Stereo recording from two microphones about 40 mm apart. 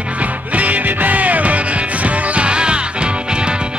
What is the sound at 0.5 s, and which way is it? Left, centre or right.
Music, right.